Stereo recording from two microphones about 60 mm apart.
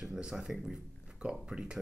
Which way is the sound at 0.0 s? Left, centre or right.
Centre.